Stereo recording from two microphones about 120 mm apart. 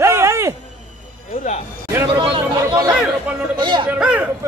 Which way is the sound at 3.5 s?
40° right (ahead or behind).